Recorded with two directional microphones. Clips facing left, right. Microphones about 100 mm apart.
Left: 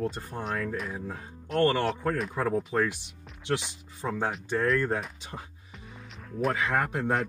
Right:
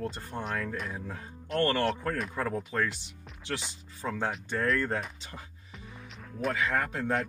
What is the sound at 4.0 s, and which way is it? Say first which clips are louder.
Speech: left 2 dB; 20° left (ahead or behind).